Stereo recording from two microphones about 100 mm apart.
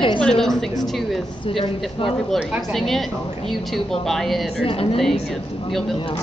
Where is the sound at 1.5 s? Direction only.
60° left (ahead or behind).